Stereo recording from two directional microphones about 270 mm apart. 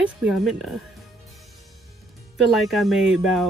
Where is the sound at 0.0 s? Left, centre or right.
Centre.